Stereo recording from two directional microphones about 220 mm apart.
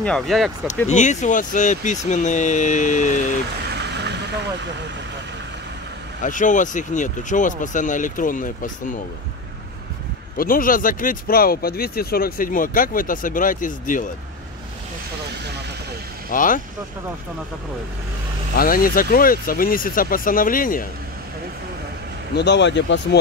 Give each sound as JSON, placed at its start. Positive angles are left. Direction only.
{"t": 0.0, "sound": "speech", "side_deg": 0}
{"t": 0.8, "sound": "speech", "side_deg": 35}
{"t": 3.7, "sound": "vehicle", "side_deg": -50}
{"t": 6.2, "sound": "speech", "side_deg": 35}
{"t": 10.3, "sound": "speech", "side_deg": 40}
{"t": 16.3, "sound": "speech", "side_deg": 35}
{"t": 18.6, "sound": "speech", "side_deg": 40}
{"t": 22.3, "sound": "speech", "side_deg": 50}